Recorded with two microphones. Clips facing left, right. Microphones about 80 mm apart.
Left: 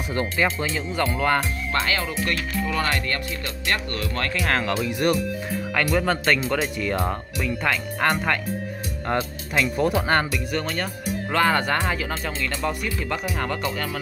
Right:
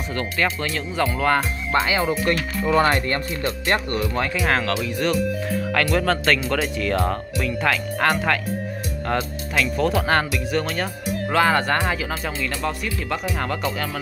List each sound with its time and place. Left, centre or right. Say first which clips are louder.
0.1 s speech: left 1 dB; centre
1.7 s speech: right 6 dB; centre
4.0 s speech: right 3 dB; centre
4.8 s speech: left 1 dB; centre
5.1 s speech: right 3 dB; centre
9.0 s speech: even; centre
11.8 s speech: right 2 dB; centre